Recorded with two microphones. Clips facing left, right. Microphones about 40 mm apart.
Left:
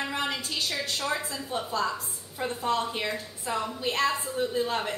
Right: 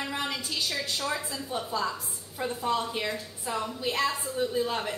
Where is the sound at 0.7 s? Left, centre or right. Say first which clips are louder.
Left 1 dB; centre.